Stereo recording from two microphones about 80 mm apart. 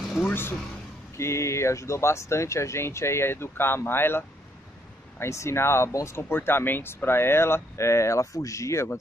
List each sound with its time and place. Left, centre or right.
0.2 s speech: left
5.2 s speech: left